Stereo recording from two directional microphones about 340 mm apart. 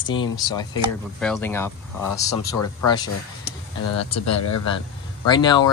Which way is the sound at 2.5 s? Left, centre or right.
Left.